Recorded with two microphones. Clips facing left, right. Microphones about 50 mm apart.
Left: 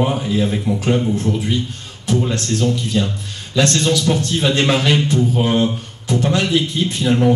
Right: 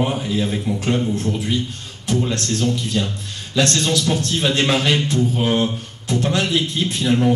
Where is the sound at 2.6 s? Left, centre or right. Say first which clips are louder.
Left 3 dB; left.